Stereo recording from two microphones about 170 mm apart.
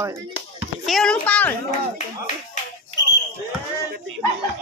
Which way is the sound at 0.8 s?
Centre (ahead or behind).